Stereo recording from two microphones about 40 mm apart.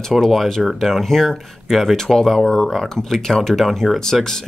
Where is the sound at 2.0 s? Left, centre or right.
Centre.